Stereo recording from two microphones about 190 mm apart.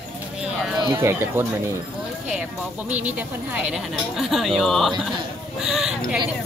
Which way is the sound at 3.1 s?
5° right (ahead or behind).